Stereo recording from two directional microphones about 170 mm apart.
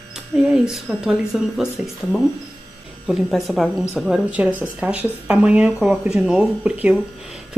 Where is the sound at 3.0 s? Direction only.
Centre (ahead or behind).